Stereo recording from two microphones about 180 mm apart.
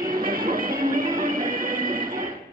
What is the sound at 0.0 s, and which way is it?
Music, 50° right (ahead or behind).